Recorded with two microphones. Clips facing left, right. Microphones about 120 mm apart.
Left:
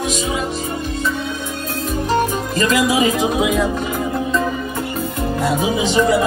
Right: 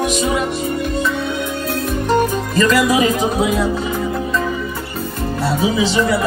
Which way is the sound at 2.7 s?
45° right (ahead or behind).